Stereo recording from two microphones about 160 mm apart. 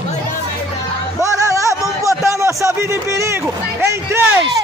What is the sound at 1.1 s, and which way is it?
Music, 20° right (ahead or behind).